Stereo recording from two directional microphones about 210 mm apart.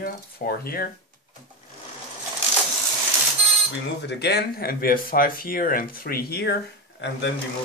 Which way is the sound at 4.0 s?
55° left (ahead or behind).